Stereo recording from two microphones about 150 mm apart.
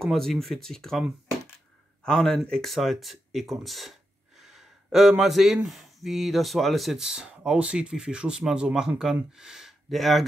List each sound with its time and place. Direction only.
0.0 s speech: centre (ahead or behind)